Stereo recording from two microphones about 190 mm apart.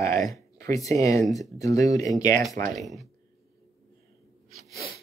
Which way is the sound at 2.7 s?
Centre (ahead or behind).